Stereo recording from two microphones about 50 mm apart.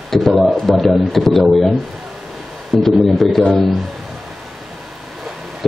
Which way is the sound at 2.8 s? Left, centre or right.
Centre.